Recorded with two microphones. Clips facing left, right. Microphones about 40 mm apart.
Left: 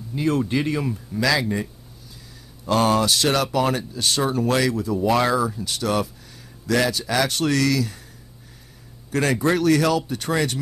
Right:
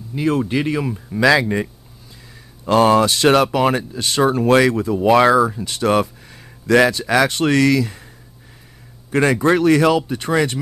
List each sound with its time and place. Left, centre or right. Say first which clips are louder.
0.1 s speech: right 3 dB; centre
9.4 s speech: right 4 dB; right